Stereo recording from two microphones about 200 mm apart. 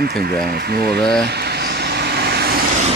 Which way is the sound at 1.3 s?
55° right (ahead or behind).